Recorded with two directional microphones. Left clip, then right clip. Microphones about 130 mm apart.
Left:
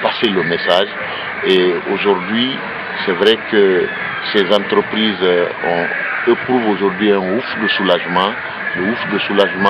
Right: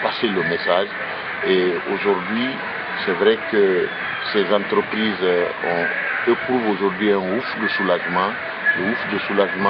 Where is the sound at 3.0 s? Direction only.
Centre (ahead or behind).